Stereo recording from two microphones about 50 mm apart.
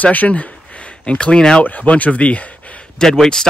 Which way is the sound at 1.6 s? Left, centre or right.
Left.